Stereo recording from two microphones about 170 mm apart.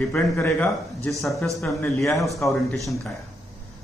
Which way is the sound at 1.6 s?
15° left (ahead or behind).